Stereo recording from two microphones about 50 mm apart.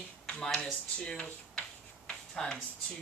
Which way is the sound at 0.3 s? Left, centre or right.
Centre.